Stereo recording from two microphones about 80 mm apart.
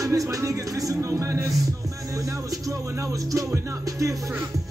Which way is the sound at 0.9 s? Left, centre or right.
Right.